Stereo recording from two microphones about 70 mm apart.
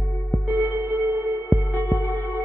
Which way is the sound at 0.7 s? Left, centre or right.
Right.